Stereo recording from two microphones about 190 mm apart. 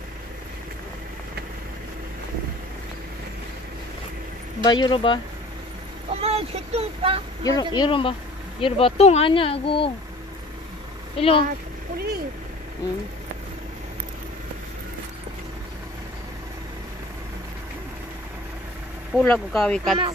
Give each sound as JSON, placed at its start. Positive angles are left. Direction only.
{"t": 4.6, "sound": "speech", "side_deg": 25}
{"t": 6.2, "sound": "child singing", "side_deg": -35}
{"t": 7.4, "sound": "speech", "side_deg": 20}
{"t": 11.1, "sound": "speech", "side_deg": 30}
{"t": 12.0, "sound": "a sound", "side_deg": -55}
{"t": 19.1, "sound": "speech", "side_deg": 5}